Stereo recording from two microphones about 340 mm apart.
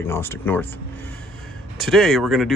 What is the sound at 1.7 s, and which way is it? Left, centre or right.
Speech, centre.